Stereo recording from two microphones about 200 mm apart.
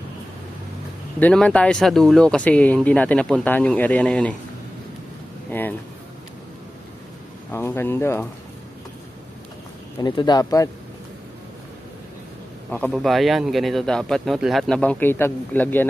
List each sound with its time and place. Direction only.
1.2 s a man's voice: 5° left (ahead or behind)
5.5 s speech: 10° left (ahead or behind)
7.5 s speech: 10° left (ahead or behind)
10.0 s speech: 20° left (ahead or behind)
12.6 s a man's voice: 5° left (ahead or behind)